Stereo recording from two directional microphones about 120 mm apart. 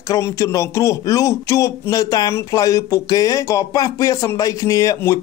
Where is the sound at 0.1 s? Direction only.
25° left (ahead or behind).